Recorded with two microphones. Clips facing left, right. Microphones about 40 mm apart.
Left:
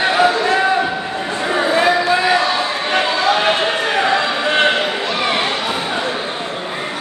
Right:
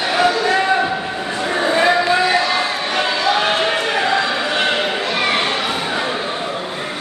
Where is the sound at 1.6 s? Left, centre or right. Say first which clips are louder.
Even; centre.